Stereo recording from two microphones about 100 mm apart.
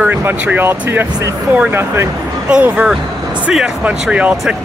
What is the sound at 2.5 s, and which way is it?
Speech, 15° right (ahead or behind).